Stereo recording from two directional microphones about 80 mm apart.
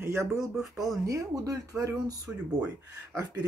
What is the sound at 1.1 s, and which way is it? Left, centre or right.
Speech, right.